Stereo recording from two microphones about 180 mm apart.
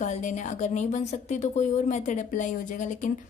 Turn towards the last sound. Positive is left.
turn(degrees=45)  # may be behind; listen again after turning